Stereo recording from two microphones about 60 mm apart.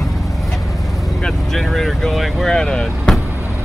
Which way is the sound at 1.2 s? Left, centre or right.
Centre.